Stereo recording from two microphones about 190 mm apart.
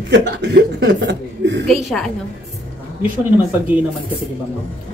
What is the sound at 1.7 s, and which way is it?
Speech, centre (ahead or behind).